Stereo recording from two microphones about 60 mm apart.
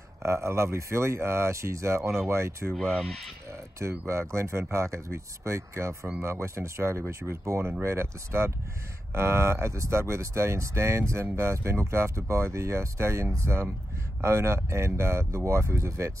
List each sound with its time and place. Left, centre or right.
0.2 s speech: right
4.1 s speech: right